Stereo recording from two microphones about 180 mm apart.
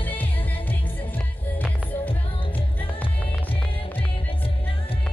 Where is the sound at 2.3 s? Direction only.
30° left (ahead or behind).